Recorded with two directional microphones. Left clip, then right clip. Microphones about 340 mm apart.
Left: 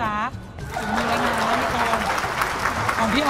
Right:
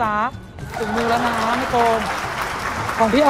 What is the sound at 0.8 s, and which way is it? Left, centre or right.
Speech, centre.